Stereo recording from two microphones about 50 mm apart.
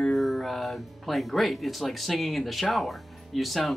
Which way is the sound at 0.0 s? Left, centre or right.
Centre.